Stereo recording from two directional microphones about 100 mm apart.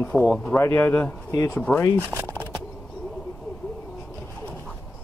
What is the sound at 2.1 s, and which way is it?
Speech, 15° left (ahead or behind).